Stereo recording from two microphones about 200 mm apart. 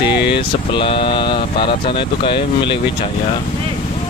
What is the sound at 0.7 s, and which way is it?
Speech, 25° left (ahead or behind).